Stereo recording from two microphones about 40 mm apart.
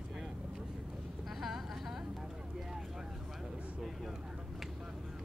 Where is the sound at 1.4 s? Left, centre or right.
Centre.